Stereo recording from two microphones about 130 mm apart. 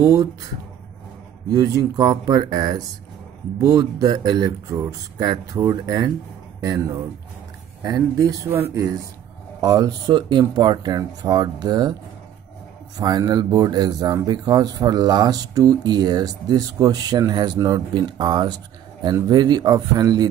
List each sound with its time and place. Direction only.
0.0 s speech: 25° right (ahead or behind)
1.5 s speech: 25° right (ahead or behind)
12.9 s speech: 30° right (ahead or behind)